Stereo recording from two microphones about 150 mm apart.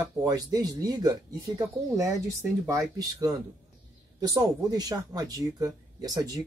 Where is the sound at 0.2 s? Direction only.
25° right (ahead or behind).